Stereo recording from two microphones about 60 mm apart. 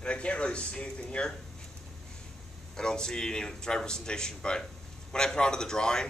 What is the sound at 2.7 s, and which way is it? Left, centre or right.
Speech, centre.